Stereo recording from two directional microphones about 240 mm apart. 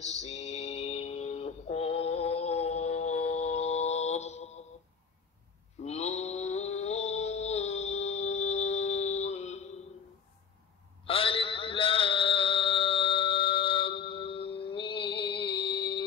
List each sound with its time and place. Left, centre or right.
0.1 s mantra: left
5.8 s mantra: left
11.1 s a sound: left